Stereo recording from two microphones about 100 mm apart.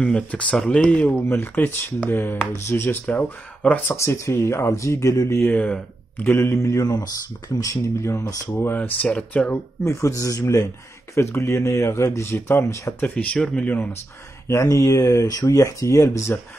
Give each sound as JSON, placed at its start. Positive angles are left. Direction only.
{"t": 0.0, "sound": "speech", "side_deg": 10}
{"t": 5.5, "sound": "speech", "side_deg": 15}
{"t": 8.5, "sound": "speech", "side_deg": 15}
{"t": 9.8, "sound": "speech", "side_deg": 30}
{"t": 13.0, "sound": "speech", "side_deg": 15}
{"t": 14.5, "sound": "speech", "side_deg": 30}